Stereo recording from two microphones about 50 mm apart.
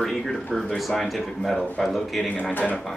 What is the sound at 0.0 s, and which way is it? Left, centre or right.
Speech, centre.